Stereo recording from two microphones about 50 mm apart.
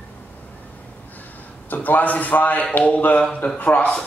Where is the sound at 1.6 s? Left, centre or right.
Left.